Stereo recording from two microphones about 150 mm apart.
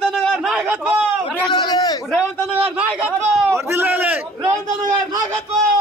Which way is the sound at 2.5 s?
10° right (ahead or behind).